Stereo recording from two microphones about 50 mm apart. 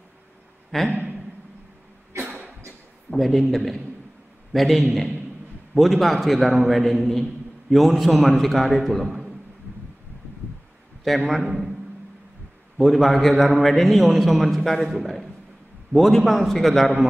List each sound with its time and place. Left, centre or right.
0.7 s speech: centre
2.2 s a sound: right
3.2 s a man's voice: centre
11.1 s a man's voice: centre
11.4 s a man's voice: centre
12.7 s a man's voice: centre